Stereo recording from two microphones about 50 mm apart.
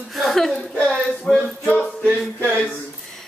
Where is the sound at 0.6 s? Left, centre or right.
Left.